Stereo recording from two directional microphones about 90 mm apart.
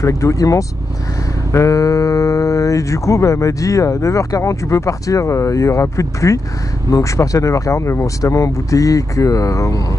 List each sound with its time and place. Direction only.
0.0 s speech: 35° left (ahead or behind)